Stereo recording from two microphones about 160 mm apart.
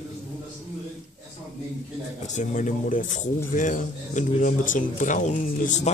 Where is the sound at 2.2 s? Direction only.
50° left (ahead or behind).